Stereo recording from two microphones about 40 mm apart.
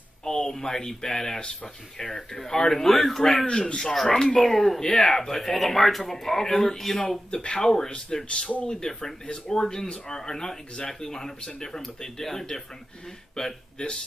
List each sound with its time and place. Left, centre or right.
0.2 s speech: centre
3.4 s speech: left; by 7.0 s centre
7.2 s speech: left